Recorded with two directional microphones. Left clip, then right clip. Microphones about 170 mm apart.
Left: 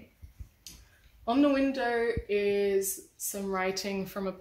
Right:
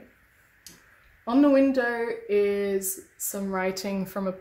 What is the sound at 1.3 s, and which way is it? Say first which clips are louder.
A woman's voice: right 6 dB; 75° right (ahead or behind).